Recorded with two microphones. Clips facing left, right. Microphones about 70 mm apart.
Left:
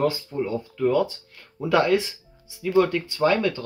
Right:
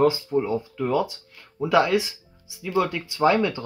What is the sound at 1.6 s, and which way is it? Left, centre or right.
Speech, centre.